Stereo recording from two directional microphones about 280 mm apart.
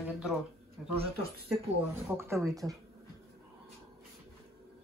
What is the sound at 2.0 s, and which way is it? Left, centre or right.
Speech, centre.